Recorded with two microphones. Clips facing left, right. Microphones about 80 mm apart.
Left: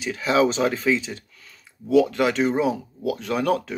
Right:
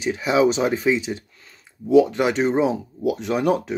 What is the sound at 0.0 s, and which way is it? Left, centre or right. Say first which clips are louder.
Speech: right 2 dB; right.